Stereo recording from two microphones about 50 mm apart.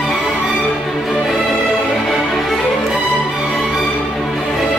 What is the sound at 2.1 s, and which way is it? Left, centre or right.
Music, centre.